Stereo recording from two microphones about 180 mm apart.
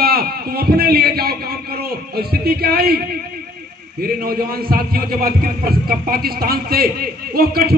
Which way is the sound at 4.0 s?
55° right (ahead or behind).